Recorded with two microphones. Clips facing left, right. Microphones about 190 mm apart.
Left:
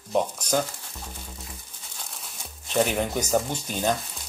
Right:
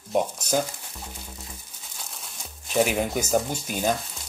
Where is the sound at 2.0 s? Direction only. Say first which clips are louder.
Even; centre (ahead or behind).